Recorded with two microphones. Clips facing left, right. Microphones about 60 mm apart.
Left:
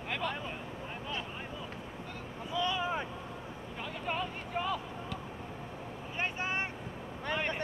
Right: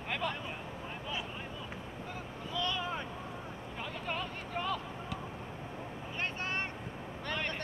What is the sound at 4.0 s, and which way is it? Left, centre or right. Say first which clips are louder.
Vehicle: left 4 dB; centre.